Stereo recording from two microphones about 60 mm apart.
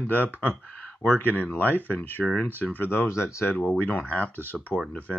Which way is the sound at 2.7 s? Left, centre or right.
Left.